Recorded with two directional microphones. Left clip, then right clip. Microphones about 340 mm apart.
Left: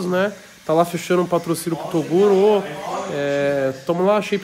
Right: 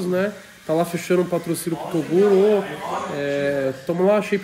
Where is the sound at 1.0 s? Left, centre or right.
Centre.